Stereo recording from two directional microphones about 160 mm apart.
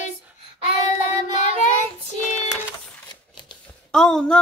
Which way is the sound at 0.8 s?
45° left (ahead or behind).